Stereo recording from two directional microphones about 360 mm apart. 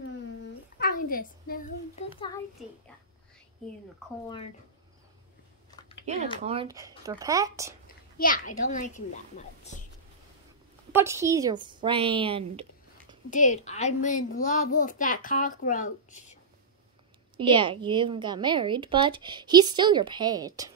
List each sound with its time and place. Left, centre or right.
0.7 s a child's voice: left
4.0 s speech: centre
6.1 s a woman's voice: centre
8.2 s a child's voice: left
10.9 s a woman's voice: centre
13.3 s a child's voice: left
17.4 s a woman's voice: centre